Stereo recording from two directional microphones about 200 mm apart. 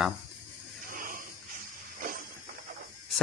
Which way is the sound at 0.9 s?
45° right (ahead or behind).